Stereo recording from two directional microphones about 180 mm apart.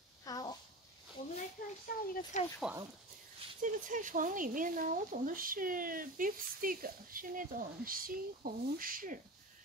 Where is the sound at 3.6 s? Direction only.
45° right (ahead or behind).